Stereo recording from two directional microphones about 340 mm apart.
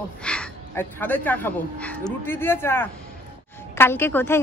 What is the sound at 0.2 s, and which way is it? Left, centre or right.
A man's voice, centre.